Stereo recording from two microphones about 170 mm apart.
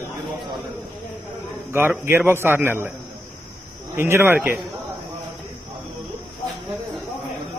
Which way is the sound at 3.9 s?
15° right (ahead or behind).